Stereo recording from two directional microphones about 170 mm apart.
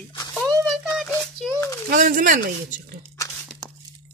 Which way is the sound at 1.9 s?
55° right (ahead or behind).